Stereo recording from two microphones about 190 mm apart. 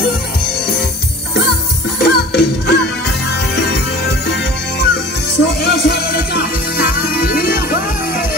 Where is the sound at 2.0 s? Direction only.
60° left (ahead or behind).